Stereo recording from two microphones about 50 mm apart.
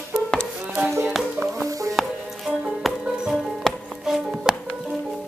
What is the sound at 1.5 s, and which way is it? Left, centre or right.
Music, right.